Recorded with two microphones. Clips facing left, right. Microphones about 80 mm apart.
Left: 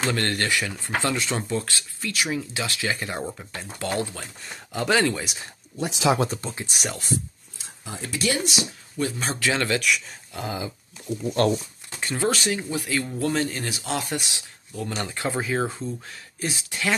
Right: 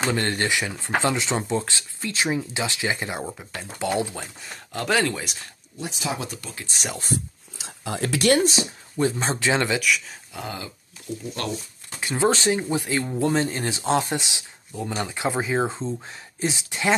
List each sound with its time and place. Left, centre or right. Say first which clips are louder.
0.0 s speech: right 1 dB; centre
3.2 s speech: even; centre
3.8 s speech: right 3 dB; centre
4.4 s speech: left 4 dB; centre
5.9 s speech: left 8 dB; left
6.1 s speech: left 7 dB; left
7.5 s speech: right 7 dB; right
8.4 s speech: right 5 dB; right
9.8 s speech: right 1 dB; centre
11.2 s speech: left 10 dB; left
12.2 s speech: right 4 dB; right